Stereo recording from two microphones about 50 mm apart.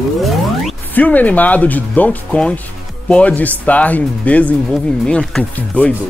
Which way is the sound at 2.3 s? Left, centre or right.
Left.